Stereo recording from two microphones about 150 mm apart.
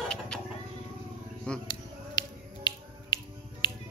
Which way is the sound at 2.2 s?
30° left (ahead or behind).